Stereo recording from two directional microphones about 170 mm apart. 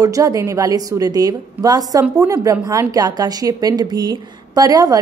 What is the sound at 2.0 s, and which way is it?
Speech, 10° right (ahead or behind).